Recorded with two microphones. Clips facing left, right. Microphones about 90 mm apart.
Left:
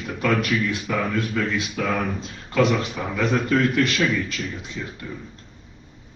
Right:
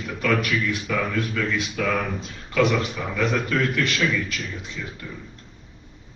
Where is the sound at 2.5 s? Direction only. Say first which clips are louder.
Left 1 dB; 25° left (ahead or behind).